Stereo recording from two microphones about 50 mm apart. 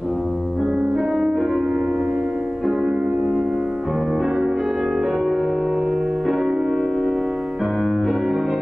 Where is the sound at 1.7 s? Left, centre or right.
Right.